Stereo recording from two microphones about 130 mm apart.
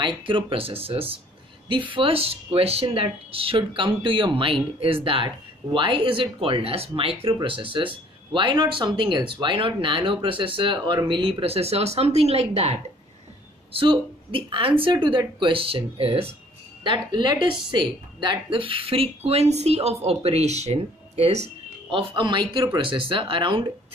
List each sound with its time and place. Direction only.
0.0 s speech: 40° right (ahead or behind)
13.7 s speech: 45° right (ahead or behind)
16.8 s speech: 35° right (ahead or behind); by 21.5 s 55° right (ahead or behind)
21.9 s speech: 40° right (ahead or behind)